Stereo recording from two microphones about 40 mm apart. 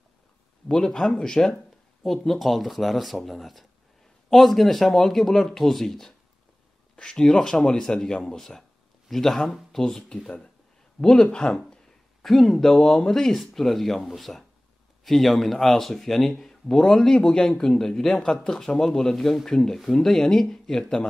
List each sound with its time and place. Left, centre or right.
0.7 s speech: centre
2.0 s a man's voice: centre
7.0 s speech: centre
8.4 s speech: centre
12.2 s a man's voice: centre